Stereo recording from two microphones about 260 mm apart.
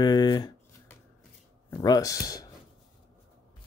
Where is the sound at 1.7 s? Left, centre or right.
Centre.